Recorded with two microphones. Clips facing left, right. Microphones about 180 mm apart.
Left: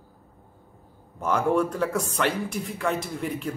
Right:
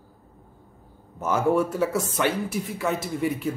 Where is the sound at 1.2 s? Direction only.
5° right (ahead or behind).